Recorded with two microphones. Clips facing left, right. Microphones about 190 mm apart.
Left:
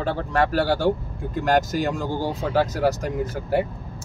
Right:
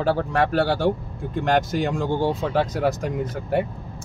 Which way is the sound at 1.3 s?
5° left (ahead or behind).